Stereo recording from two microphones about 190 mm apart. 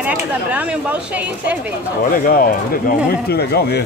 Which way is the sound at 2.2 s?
50° left (ahead or behind).